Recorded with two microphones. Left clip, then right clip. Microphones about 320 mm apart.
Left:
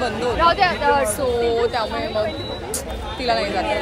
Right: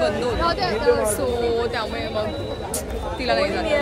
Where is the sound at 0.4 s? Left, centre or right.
Centre.